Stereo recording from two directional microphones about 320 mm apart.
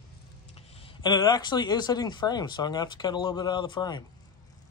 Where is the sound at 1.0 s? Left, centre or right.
Centre.